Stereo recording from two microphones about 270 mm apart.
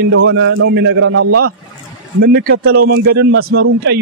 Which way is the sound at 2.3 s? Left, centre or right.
Right.